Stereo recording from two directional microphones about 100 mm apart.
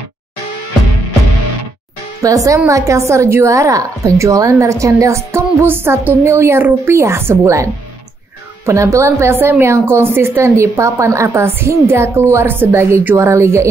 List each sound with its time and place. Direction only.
2.2 s a woman's voice: 35° right (ahead or behind)